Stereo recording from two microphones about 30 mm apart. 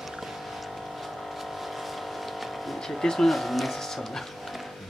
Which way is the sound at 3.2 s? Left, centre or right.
Centre.